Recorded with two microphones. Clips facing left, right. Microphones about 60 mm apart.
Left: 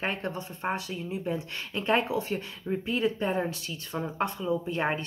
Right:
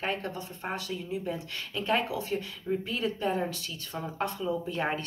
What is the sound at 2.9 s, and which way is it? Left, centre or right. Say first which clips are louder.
Speech: left 5 dB; left.